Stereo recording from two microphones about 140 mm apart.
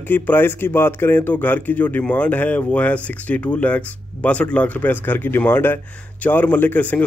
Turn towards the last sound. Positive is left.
turn(degrees=10)  # may be behind; listen again after turning